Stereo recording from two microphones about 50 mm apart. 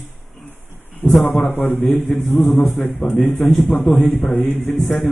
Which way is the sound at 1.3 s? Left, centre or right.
Left.